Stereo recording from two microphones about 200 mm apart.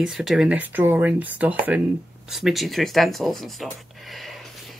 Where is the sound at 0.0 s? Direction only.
Centre (ahead or behind).